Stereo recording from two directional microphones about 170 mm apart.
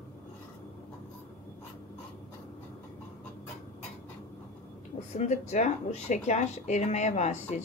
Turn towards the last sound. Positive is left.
turn(degrees=40)  # may be behind; listen again after turning